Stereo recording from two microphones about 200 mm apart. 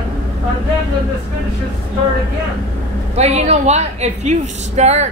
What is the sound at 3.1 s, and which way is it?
A woman's voice, 30° right (ahead or behind).